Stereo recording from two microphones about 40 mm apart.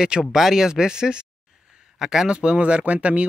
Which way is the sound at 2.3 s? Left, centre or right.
Right.